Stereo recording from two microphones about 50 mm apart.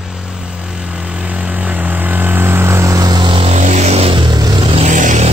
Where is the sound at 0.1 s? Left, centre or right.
Centre; by 3.0 s right.